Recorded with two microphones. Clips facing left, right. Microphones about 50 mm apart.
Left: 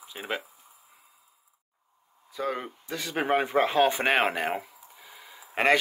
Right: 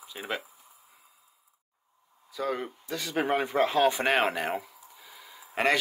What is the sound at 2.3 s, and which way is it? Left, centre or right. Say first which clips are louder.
Speech: even; left.